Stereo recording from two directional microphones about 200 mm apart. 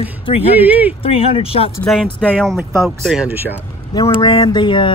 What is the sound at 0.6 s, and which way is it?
Speech, 10° right (ahead or behind).